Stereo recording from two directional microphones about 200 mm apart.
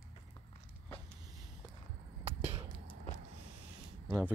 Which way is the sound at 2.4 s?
30° right (ahead or behind).